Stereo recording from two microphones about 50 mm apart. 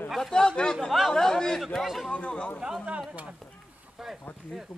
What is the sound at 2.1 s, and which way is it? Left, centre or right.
Speech, left.